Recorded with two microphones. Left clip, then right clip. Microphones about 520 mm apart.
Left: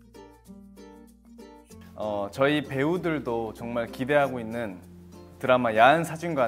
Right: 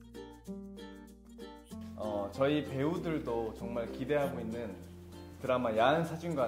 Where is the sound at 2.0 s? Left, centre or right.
Left.